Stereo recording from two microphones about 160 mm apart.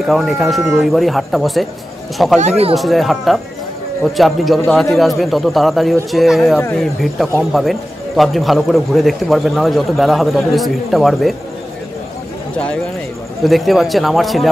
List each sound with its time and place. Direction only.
0.0 s a man's voice: centre (ahead or behind)
2.4 s speech: 40° right (ahead or behind)
2.7 s a man's voice: centre (ahead or behind)
13.5 s a man's voice: centre (ahead or behind)